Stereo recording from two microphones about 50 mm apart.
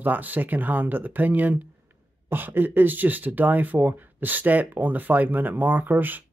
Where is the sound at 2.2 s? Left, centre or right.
Right.